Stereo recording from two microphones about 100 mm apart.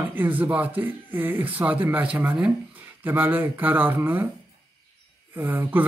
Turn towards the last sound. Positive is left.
turn(degrees=-20)  # may be behind; listen again after turning